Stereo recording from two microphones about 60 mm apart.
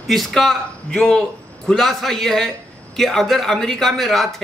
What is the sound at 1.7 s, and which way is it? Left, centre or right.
A man's voice, centre.